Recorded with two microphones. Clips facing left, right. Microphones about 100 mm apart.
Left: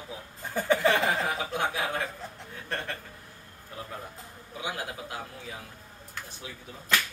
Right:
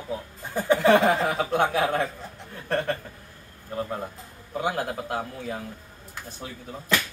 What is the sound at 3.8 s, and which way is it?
A man's voice, 50° right (ahead or behind).